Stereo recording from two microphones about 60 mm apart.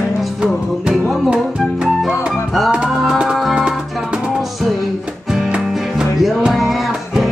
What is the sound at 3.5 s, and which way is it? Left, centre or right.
Music, centre.